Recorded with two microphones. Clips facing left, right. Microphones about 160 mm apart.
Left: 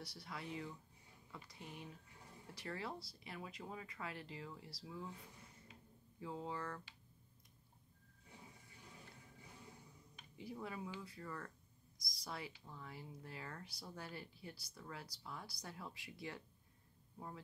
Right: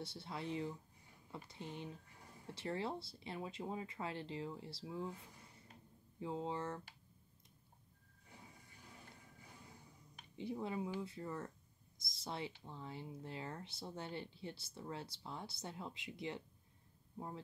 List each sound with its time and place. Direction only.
0.0 s speech: 25° right (ahead or behind)
6.1 s speech: 25° right (ahead or behind)
10.3 s speech: 25° right (ahead or behind)